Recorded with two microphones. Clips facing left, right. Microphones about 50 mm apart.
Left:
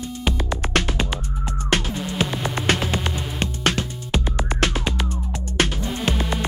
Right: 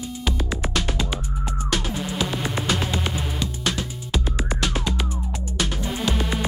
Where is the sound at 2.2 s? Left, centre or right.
Centre.